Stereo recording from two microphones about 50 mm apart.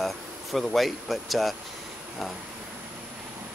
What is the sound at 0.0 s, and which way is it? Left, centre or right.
Speech, centre.